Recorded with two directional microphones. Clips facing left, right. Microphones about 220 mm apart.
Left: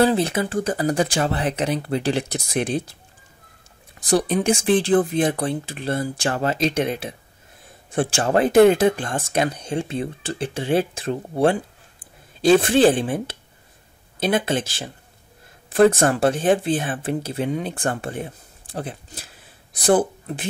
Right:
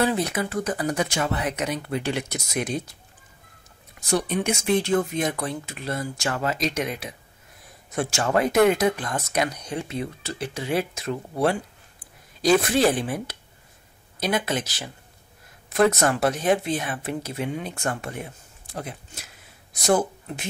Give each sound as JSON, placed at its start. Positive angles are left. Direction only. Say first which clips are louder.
{"t": 0.0, "sound": "speech", "louder": "left 5 dB", "side_deg": 30}
{"t": 4.0, "sound": "speech", "louder": "left 5 dB", "side_deg": 35}